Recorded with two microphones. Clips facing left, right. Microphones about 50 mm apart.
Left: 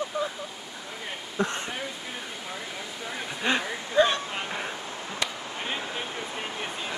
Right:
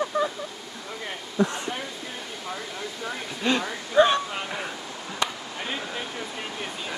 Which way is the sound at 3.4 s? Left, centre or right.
Centre.